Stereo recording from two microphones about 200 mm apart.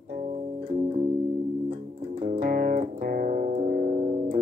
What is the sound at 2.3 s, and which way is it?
Music, 40° right (ahead or behind).